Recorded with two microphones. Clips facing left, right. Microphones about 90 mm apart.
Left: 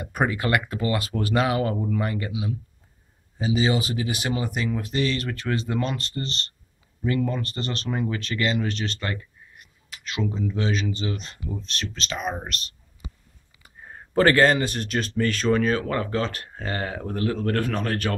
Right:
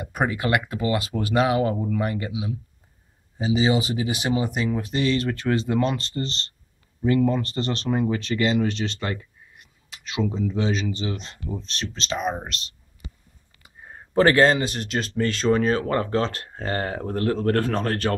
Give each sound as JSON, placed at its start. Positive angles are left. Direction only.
{"t": 0.0, "sound": "speech", "side_deg": -15}
{"t": 10.1, "sound": "speech", "side_deg": -20}
{"t": 14.1, "sound": "speech", "side_deg": -25}